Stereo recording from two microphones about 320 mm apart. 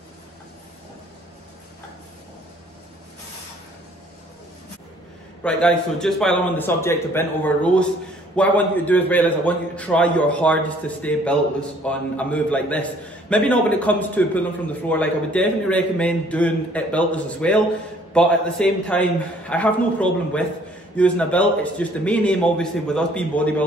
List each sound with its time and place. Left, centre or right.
5.4 s a man's voice: centre